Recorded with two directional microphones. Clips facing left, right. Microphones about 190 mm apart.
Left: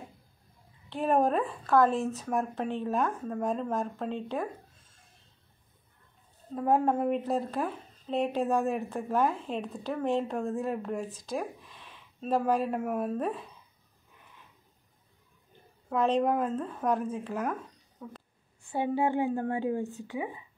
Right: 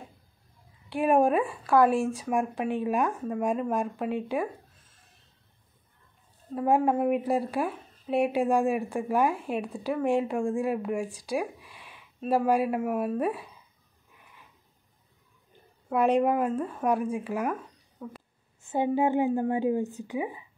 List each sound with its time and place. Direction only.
0.8 s a woman's voice: 10° right (ahead or behind)
6.5 s a woman's voice: 5° right (ahead or behind)
15.9 s a woman's voice: 10° right (ahead or behind)
18.0 s speech: centre (ahead or behind)
18.7 s a woman's voice: 20° right (ahead or behind)